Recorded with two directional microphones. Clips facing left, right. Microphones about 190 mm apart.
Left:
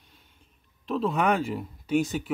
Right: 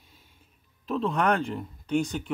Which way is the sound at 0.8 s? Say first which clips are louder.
Left 1 dB; centre (ahead or behind).